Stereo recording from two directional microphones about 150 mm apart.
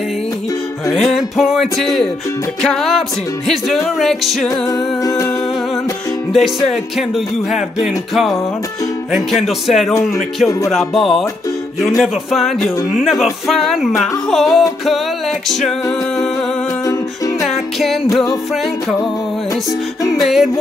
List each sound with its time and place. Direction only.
0.8 s music: centre (ahead or behind)
4.5 s music: 25° left (ahead or behind)
6.3 s music: centre (ahead or behind)
17.5 s music: centre (ahead or behind)
20.2 s music: centre (ahead or behind)